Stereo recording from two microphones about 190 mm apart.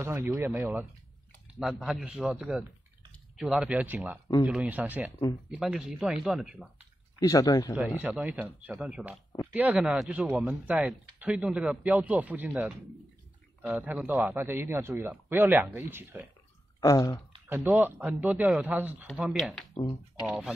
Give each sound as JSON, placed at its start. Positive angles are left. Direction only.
{"t": 0.0, "sound": "a man's voice", "side_deg": -15}
{"t": 7.2, "sound": "speech", "side_deg": 20}
{"t": 7.7, "sound": "a man's voice", "side_deg": -10}
{"t": 16.8, "sound": "speech", "side_deg": 20}
{"t": 17.6, "sound": "a man's voice", "side_deg": -10}
{"t": 19.8, "sound": "speech", "side_deg": 20}
{"t": 20.2, "sound": "speech", "side_deg": 0}